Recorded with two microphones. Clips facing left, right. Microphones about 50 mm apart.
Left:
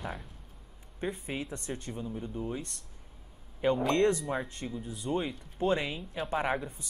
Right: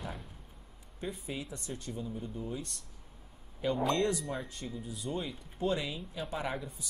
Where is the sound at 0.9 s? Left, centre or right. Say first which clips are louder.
Left 4 dB; left.